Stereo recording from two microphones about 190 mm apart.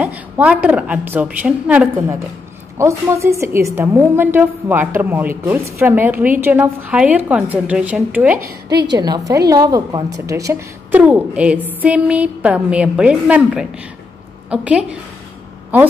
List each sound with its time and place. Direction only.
0.0 s a woman's voice: 10° right (ahead or behind)
8.8 s a woman's voice: 20° right (ahead or behind); by 15.0 s 5° right (ahead or behind)